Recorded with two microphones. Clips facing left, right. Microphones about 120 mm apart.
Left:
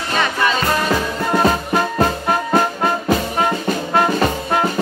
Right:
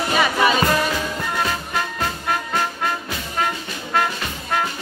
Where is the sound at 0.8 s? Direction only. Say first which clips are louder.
Left 5 dB; 45° left (ahead or behind).